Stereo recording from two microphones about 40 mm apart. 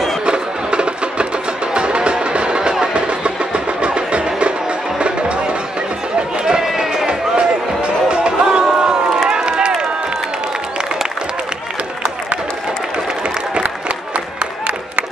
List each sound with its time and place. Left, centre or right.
0.2 s music: right
6.1 s chatter: right
6.6 s music: centre
9.3 s run: right